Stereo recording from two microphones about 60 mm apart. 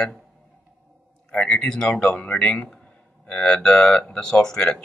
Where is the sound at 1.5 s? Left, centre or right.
Centre.